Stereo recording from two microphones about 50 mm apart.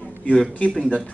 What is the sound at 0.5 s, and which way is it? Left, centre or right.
Speech, left.